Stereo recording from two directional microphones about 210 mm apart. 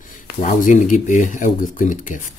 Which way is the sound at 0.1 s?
40° left (ahead or behind).